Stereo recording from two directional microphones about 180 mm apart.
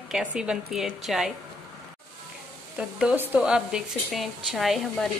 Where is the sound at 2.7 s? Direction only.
10° right (ahead or behind).